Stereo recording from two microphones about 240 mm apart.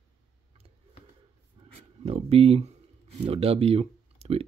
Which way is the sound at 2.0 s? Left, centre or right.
Right.